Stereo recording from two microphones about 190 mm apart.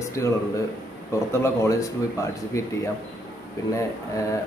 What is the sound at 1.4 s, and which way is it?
A man's voice, 15° left (ahead or behind).